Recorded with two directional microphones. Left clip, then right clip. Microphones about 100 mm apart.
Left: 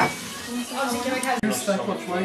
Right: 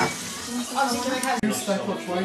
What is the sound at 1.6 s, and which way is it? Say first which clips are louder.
Speech: left 1 dB; 20° left (ahead or behind).